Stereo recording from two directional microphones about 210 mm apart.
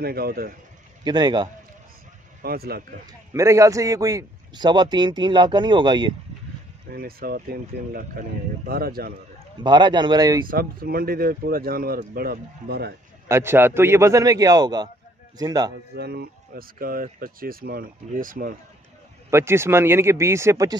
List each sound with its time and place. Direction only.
0.0 s speech: 45° right (ahead or behind)
1.0 s a man's voice: 20° right (ahead or behind)
2.4 s speech: 45° right (ahead or behind)
3.1 s a man's voice: 15° right (ahead or behind)
6.9 s speech: 45° right (ahead or behind)
9.6 s a man's voice: 20° right (ahead or behind)
10.5 s speech: 45° right (ahead or behind)
13.3 s a man's voice: 10° right (ahead or behind)
16.0 s speech: 50° right (ahead or behind)
19.3 s a man's voice: 10° right (ahead or behind)